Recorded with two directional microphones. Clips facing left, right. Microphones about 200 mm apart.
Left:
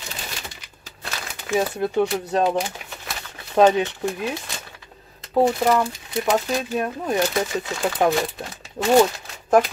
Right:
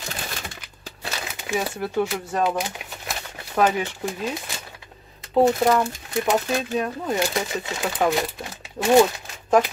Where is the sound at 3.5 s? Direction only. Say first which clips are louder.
Left 5 dB; 25° left (ahead or behind).